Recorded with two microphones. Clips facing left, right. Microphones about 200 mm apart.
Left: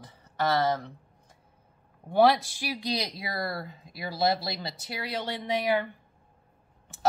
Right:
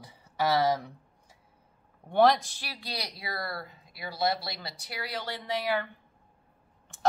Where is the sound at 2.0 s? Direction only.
5° left (ahead or behind).